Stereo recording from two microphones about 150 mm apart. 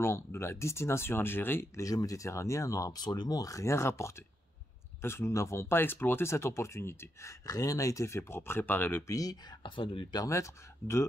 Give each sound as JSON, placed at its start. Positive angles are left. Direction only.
{"t": 0.0, "sound": "speech", "side_deg": 15}